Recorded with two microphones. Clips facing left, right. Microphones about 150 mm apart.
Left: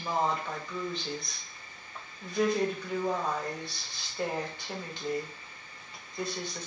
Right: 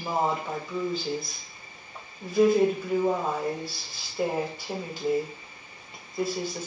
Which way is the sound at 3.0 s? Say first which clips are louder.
Right 4 dB; 20° right (ahead or behind).